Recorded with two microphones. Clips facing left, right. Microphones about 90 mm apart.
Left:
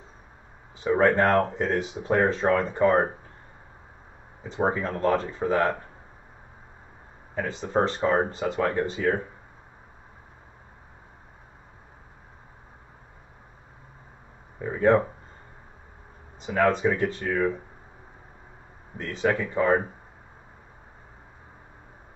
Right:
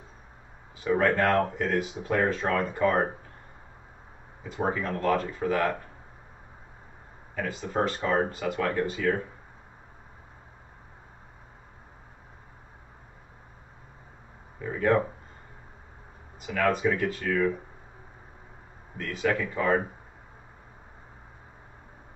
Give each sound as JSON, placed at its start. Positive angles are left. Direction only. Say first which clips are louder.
{"t": 0.7, "sound": "speech", "louder": "left 3 dB", "side_deg": 25}
{"t": 4.4, "sound": "speech", "louder": "left 3 dB", "side_deg": 30}
{"t": 7.3, "sound": "speech", "louder": "left 3 dB", "side_deg": 30}
{"t": 14.6, "sound": "a sound", "louder": "left 4 dB", "side_deg": 25}
{"t": 16.3, "sound": "speech", "louder": "left 3 dB", "side_deg": 30}
{"t": 18.9, "sound": "speech", "louder": "left 2 dB", "side_deg": 25}